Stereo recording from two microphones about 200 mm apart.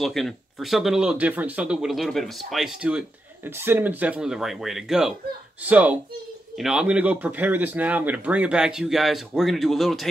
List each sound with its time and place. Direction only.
0.0 s speech: centre (ahead or behind)